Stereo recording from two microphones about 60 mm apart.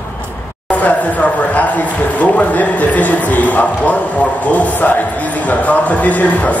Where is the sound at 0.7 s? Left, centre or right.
Left.